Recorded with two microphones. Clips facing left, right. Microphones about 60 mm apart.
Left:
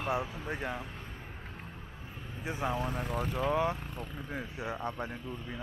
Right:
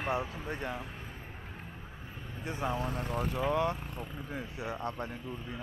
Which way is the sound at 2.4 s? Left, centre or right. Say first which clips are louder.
Left 1 dB; centre.